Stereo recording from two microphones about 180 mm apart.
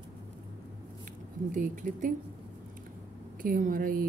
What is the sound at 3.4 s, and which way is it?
Speech, 50° right (ahead or behind).